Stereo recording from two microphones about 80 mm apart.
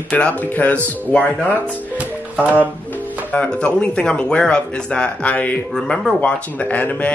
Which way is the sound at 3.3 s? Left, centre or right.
Centre.